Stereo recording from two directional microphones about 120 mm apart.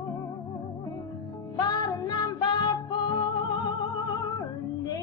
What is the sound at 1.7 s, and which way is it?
Music, 35° left (ahead or behind).